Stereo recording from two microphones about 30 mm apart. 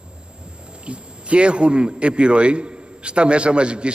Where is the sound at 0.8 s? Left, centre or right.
Right.